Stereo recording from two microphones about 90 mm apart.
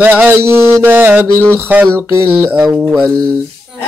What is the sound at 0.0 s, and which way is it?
Mantra, 15° right (ahead or behind).